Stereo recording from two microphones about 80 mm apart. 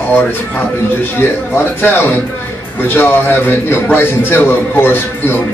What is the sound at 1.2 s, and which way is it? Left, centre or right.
A man's voice, left.